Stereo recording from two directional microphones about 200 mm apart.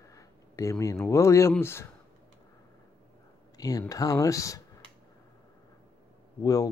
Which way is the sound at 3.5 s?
20° left (ahead or behind).